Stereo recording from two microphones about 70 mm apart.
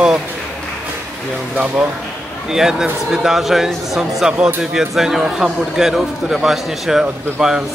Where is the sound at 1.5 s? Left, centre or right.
Centre.